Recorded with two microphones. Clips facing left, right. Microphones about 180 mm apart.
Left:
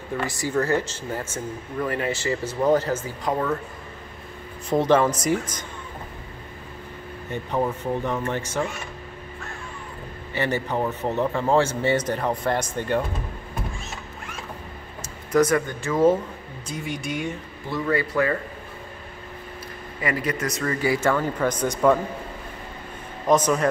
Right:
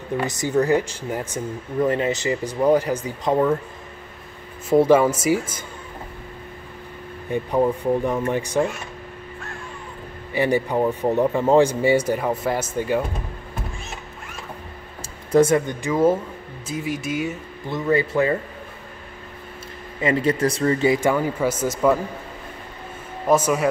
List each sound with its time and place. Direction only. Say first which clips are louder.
0.2 s speech: right 4 dB; 20° right (ahead or behind)
4.6 s speech: right 4 dB; 5° right (ahead or behind)
7.2 s speech: right 5 dB; 10° right (ahead or behind)
10.3 s speech: right 5 dB; 10° right (ahead or behind)
15.0 s speech: right 3 dB; 25° right (ahead or behind); by 17.4 s 5° right (ahead or behind)
17.6 s speech: right 3 dB; 20° right (ahead or behind)
20.0 s speech: right 6 dB; 25° right (ahead or behind); by 21.9 s 5° right (ahead or behind)
23.2 s speech: right 1 dB; 10° right (ahead or behind)